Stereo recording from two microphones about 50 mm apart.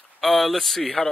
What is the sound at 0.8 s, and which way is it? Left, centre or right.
Speech, centre.